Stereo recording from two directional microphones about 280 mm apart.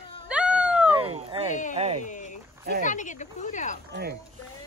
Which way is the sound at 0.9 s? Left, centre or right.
Centre.